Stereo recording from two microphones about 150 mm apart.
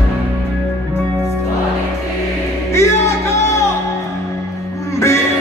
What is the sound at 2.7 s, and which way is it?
Music, 20° left (ahead or behind).